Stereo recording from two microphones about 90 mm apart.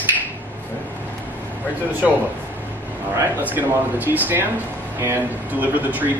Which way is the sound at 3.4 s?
20° right (ahead or behind).